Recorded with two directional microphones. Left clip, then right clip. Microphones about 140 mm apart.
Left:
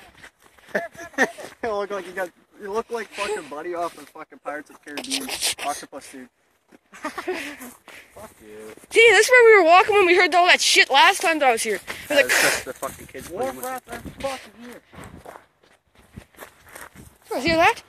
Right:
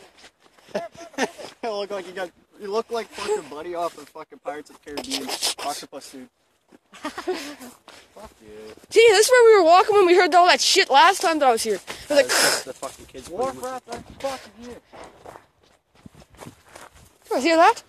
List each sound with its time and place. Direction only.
0.7 s a sound: 40° left (ahead or behind)
2.7 s speech: 45° right (ahead or behind)
6.9 s a sound: 20° left (ahead or behind)
7.6 s a sound: 65° left (ahead or behind)
8.9 s speech: 25° right (ahead or behind)
10.0 s speech: 40° right (ahead or behind)
12.6 s speech: 45° left (ahead or behind)
13.7 s speech: 30° left (ahead or behind)
14.1 s speech: 45° right (ahead or behind)
16.3 s walk: 45° left (ahead or behind)
17.3 s speech: 55° right (ahead or behind)